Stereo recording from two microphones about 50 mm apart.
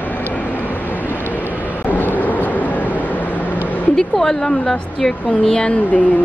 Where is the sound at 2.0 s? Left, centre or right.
Left.